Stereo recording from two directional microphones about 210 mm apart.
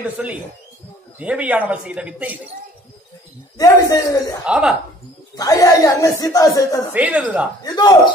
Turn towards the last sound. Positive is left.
turn(degrees=20)  # may be behind; listen again after turning